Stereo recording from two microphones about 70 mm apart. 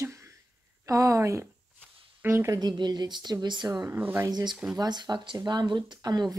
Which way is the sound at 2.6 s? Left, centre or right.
Right.